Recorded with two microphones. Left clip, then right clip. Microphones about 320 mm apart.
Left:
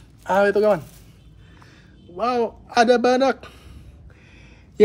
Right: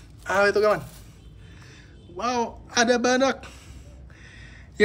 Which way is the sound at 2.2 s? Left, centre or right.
Centre.